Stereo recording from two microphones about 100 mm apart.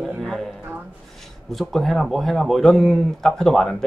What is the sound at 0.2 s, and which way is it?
Music, 5° left (ahead or behind).